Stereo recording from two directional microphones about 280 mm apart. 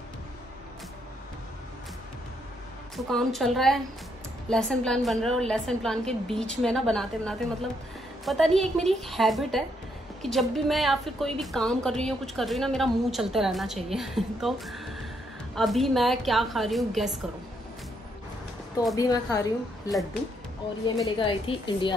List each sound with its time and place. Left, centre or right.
3.0 s a woman's voice: centre
18.9 s a woman's voice: centre
20.8 s a woman's voice: centre